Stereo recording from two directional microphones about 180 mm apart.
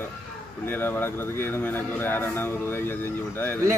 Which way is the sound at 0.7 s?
10° left (ahead or behind).